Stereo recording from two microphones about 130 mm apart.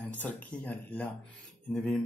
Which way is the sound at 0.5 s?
5° left (ahead or behind).